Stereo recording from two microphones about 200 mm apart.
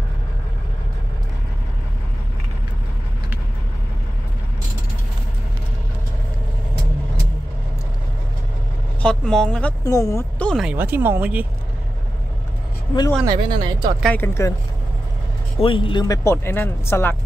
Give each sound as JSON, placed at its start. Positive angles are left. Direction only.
{"t": 9.0, "sound": "a woman's voice", "side_deg": 5}
{"t": 10.5, "sound": "speech", "side_deg": -5}
{"t": 13.2, "sound": "speech", "side_deg": -20}
{"t": 14.0, "sound": "speech", "side_deg": 10}
{"t": 15.6, "sound": "speech", "side_deg": 25}